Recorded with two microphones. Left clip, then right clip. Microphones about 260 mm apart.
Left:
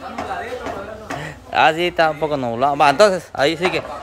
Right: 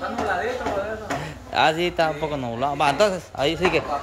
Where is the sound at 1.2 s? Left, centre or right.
Centre.